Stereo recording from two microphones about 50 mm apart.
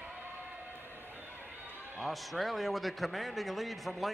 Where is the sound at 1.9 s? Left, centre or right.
Centre.